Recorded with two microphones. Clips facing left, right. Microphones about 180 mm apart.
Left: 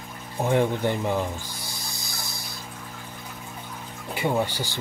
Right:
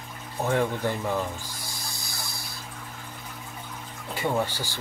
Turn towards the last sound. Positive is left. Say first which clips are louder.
# left 2 dB
turn(degrees=15)  # may be behind; listen again after turning